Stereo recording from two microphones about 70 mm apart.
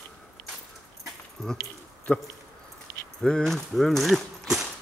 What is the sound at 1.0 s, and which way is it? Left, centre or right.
Dog, centre.